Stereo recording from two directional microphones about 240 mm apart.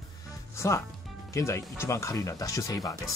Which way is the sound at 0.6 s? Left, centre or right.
Centre.